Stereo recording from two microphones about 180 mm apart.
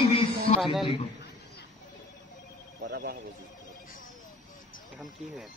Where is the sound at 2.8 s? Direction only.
60° right (ahead or behind).